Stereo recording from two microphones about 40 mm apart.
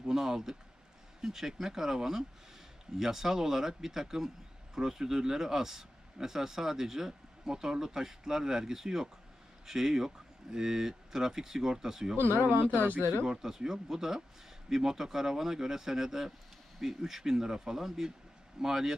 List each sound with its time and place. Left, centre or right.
0.1 s speech: centre
12.3 s speech: right
13.3 s speech: centre